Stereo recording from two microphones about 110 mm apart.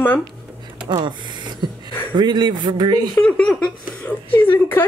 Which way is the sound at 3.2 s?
10° left (ahead or behind).